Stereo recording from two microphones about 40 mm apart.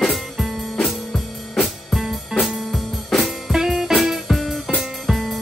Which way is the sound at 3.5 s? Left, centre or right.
Centre.